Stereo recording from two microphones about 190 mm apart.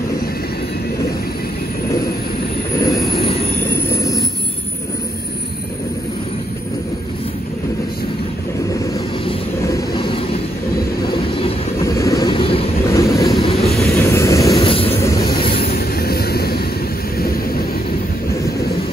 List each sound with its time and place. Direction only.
2.8 s vehicle: 15° left (ahead or behind)
9.6 s vehicle: 15° left (ahead or behind)
9.9 s train: 25° left (ahead or behind)
11.8 s vehicle: 15° left (ahead or behind)
12.9 s vehicle: 15° left (ahead or behind)
13.4 s vehicle: 30° left (ahead or behind)
13.8 s vehicle: 15° left (ahead or behind)
14.6 s vehicle: 30° left (ahead or behind)
15.0 s train: 15° left (ahead or behind)
15.5 s train: 50° left (ahead or behind)
17.2 s thunder: 50° left (ahead or behind)